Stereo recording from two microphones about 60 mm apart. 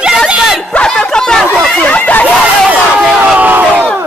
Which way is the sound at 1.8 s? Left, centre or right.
Left.